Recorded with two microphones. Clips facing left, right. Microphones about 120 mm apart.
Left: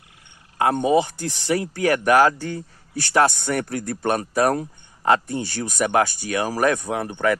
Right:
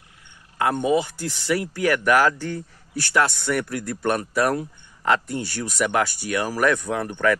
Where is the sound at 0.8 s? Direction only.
25° left (ahead or behind).